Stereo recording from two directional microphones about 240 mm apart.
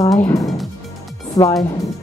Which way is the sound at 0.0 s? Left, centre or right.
Centre.